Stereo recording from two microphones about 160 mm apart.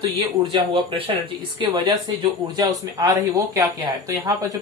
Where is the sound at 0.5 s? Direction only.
30° right (ahead or behind).